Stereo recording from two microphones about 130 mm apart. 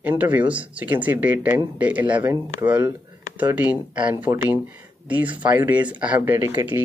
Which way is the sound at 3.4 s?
10° right (ahead or behind).